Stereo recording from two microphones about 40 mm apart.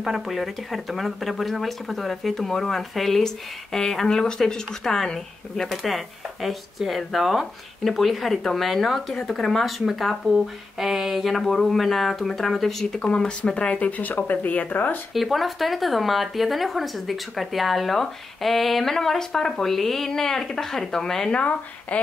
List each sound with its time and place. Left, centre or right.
0.0 s speech: centre
5.7 s speech: centre
13.0 s speech: left
15.1 s speech: centre
21.3 s speech: left